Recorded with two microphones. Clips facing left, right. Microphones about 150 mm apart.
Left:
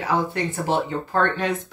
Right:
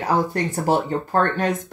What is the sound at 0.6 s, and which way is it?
Speech, 40° right (ahead or behind).